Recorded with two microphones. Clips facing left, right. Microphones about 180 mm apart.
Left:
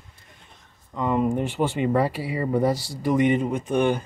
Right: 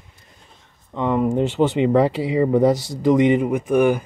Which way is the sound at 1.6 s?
20° right (ahead or behind).